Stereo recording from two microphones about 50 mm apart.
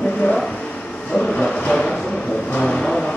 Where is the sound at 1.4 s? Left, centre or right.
Centre.